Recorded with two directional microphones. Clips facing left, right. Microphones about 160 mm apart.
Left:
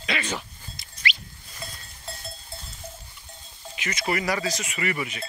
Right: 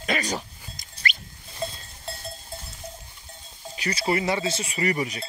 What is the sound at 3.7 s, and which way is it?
Speech, 35° right (ahead or behind).